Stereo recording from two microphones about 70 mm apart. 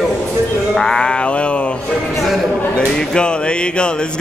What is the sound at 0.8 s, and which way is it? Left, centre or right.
Music, centre.